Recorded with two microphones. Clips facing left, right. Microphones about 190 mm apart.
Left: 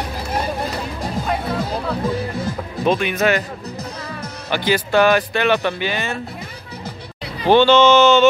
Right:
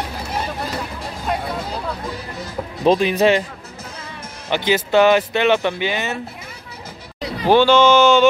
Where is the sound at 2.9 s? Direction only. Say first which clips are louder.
Right 3 dB; 30° right (ahead or behind).